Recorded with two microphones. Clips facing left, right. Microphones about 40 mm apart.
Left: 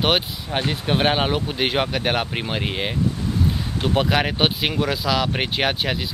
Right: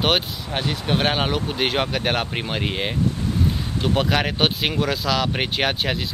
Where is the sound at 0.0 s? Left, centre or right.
Centre.